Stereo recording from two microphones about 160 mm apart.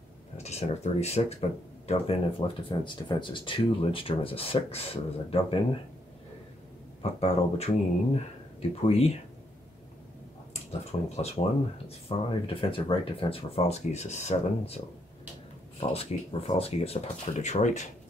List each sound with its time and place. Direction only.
0.4 s speech: 45° left (ahead or behind)
7.0 s speech: 40° left (ahead or behind)
8.8 s speech: 40° left (ahead or behind)
10.9 s speech: 45° left (ahead or behind)
15.8 s speech: 40° left (ahead or behind)